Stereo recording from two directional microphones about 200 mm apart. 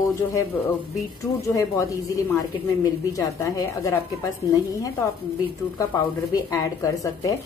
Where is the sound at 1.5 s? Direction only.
15° left (ahead or behind).